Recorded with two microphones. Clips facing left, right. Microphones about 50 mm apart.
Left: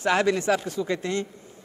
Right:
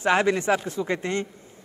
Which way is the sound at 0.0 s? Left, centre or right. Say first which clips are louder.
Right 1 dB; right.